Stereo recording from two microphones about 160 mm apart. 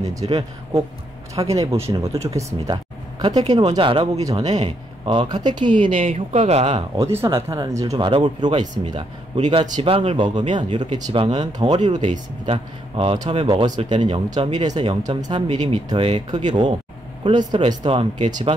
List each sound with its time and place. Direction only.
0.0 s a man's voice: 20° right (ahead or behind)
4.2 s a man's voice: 25° right (ahead or behind)
5.9 s speech: 50° right (ahead or behind)
7.0 s a man's voice: 15° right (ahead or behind)
9.4 s a man's voice: 40° right (ahead or behind)
11.7 s a man's voice: 45° right (ahead or behind)